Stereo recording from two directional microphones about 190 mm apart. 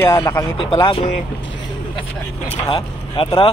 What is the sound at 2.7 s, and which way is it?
Speech, 30° left (ahead or behind).